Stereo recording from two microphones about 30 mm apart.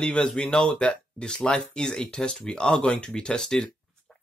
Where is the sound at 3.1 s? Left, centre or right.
Left.